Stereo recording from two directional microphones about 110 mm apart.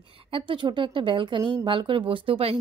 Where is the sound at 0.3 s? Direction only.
50° right (ahead or behind).